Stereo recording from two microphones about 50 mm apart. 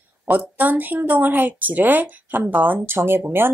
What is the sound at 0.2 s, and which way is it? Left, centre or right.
A woman's voice, right.